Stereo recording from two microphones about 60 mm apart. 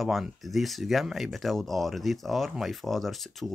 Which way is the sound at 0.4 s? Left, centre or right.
Centre.